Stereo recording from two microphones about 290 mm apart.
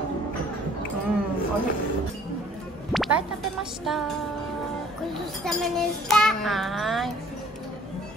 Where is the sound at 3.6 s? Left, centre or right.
Centre.